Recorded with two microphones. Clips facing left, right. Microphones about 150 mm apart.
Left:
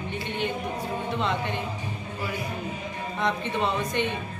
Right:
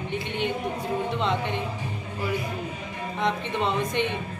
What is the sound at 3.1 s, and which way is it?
Speech, 20° right (ahead or behind).